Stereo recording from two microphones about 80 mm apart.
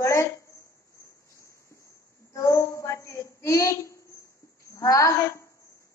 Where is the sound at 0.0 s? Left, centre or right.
Left.